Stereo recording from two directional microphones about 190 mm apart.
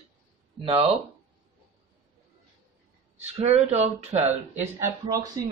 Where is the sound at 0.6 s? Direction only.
30° right (ahead or behind).